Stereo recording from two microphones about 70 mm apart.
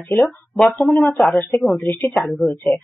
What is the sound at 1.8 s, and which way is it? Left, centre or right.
Speech, left.